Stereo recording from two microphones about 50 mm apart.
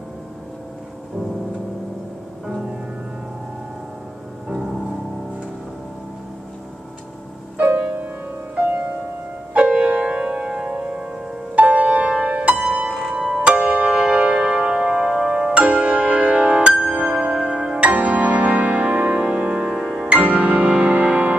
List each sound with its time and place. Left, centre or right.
7.5 s music: right
9.5 s music: right
20.1 s music: right